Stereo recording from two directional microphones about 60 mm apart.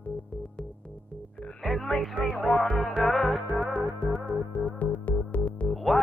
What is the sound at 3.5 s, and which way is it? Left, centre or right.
Music, centre.